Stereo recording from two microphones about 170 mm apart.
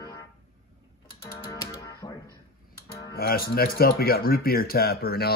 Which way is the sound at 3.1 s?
60° left (ahead or behind).